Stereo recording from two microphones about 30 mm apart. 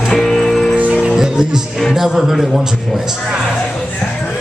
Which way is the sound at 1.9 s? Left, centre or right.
Centre.